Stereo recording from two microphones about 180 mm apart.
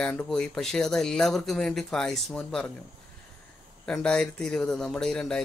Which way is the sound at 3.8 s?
5° left (ahead or behind).